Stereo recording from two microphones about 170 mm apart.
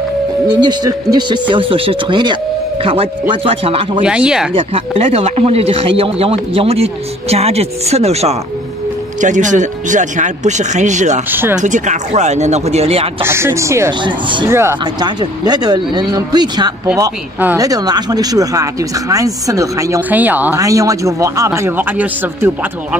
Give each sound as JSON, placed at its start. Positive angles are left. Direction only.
{"t": 0.6, "sound": "speech", "side_deg": -25}
{"t": 4.0, "sound": "speech", "side_deg": -5}
{"t": 4.6, "sound": "speech", "side_deg": -35}
{"t": 11.2, "sound": "speech", "side_deg": -10}
{"t": 11.6, "sound": "speech", "side_deg": -45}
{"t": 13.2, "sound": "speech", "side_deg": -15}